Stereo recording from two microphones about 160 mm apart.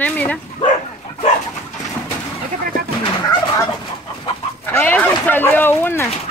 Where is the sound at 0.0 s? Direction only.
10° left (ahead or behind).